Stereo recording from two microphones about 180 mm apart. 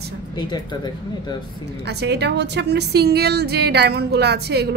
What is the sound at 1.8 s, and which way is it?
A woman's voice, 70° right (ahead or behind).